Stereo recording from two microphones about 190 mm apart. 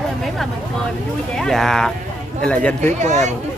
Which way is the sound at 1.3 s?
Centre (ahead or behind).